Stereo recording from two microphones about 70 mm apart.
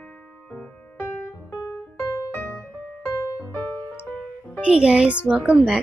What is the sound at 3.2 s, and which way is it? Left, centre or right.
Music, left.